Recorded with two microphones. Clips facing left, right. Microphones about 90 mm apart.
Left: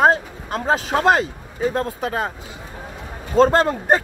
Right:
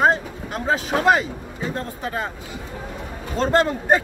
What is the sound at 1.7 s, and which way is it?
Speech, 70° left (ahead or behind).